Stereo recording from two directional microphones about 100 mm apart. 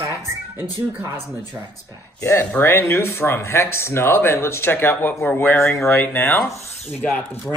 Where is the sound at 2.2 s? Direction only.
25° left (ahead or behind).